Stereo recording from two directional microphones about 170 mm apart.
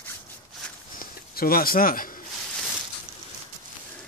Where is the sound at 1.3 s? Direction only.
60° left (ahead or behind).